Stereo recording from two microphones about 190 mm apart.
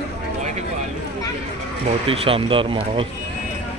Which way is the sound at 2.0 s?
30° right (ahead or behind).